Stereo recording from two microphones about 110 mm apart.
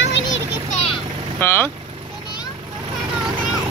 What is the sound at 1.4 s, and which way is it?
Speech, 20° left (ahead or behind).